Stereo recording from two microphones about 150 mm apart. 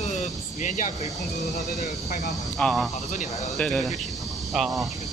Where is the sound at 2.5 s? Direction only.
5° left (ahead or behind).